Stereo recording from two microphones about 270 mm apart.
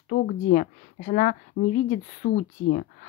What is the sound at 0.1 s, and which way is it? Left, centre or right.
A woman's voice, left.